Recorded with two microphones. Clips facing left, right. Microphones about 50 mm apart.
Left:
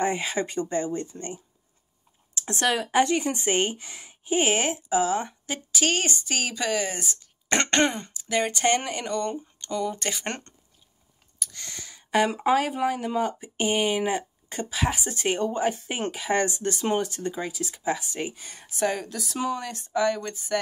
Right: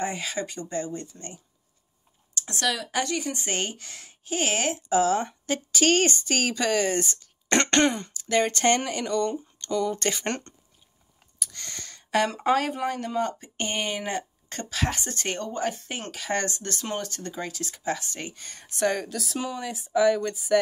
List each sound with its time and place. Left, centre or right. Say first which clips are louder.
0.0 s speech: left 4 dB; left
4.7 s speech: right 2 dB; centre
9.0 s speech: right 2 dB; left; by 20.5 s centre